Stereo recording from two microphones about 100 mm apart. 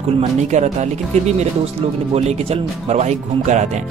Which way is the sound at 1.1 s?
90° right.